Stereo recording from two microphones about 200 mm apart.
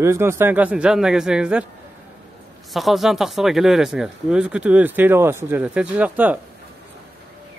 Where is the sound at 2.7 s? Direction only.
Centre (ahead or behind).